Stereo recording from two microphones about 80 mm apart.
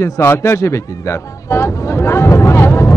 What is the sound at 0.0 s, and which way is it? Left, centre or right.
Speech, left.